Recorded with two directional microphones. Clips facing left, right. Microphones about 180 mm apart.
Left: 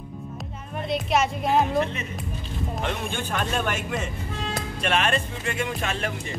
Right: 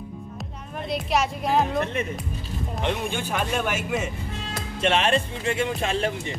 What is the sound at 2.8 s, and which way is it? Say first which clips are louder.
A man's voice: right 4 dB; 10° right (ahead or behind).